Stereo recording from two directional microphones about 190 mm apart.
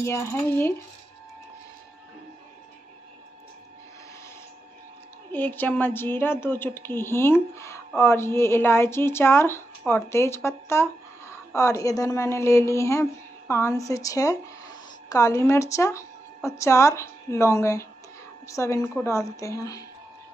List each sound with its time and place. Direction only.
0.0 s a woman's voice: 15° left (ahead or behind)
5.3 s a woman's voice: 10° left (ahead or behind)